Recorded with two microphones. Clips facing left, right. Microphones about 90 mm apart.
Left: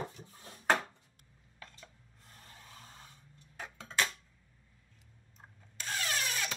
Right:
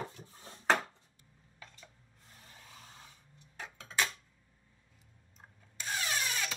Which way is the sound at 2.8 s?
Centre (ahead or behind).